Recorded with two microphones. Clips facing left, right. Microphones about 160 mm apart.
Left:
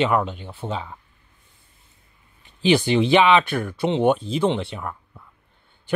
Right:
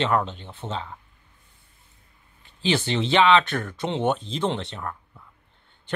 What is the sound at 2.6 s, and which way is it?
Speech, 15° left (ahead or behind).